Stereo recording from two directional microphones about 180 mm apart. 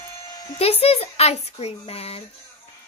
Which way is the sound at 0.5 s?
35° left (ahead or behind).